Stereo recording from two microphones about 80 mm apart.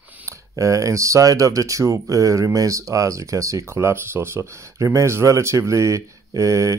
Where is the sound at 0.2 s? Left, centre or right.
Right.